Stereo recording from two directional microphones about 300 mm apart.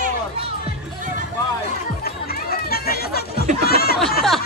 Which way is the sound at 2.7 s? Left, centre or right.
Left.